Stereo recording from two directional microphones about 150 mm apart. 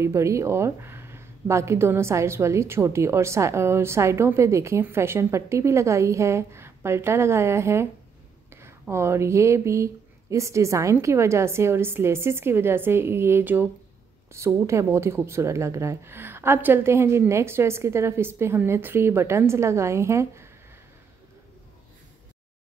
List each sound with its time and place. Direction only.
0.0 s speech: 20° right (ahead or behind)